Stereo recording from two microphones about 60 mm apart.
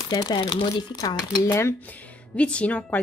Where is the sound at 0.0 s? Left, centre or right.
Left.